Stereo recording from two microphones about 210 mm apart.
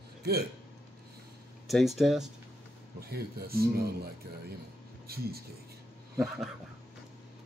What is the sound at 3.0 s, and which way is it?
A man's voice, 45° right (ahead or behind).